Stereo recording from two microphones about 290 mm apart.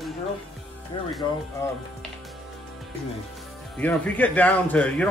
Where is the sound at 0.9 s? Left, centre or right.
Centre.